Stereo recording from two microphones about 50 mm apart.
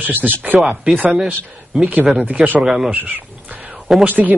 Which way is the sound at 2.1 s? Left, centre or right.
Right.